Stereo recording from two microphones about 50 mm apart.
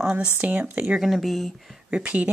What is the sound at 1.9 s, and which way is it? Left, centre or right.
Speech, right.